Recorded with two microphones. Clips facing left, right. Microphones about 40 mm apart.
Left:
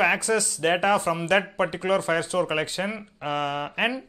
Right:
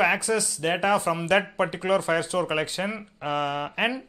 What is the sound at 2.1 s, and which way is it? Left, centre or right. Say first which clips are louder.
Speech: left 1 dB; left.